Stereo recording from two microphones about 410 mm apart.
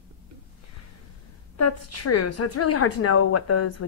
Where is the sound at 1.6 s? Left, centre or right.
Left.